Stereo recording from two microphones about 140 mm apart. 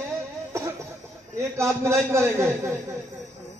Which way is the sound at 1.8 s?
20° right (ahead or behind).